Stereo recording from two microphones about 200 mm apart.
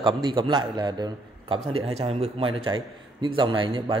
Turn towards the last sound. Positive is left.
turn(degrees=-25)  # may be behind; listen again after turning